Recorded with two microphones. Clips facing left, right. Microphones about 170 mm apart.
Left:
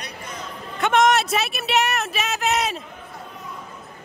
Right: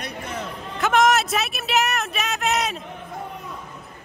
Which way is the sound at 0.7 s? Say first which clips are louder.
Left 1 dB; centre (ahead or behind).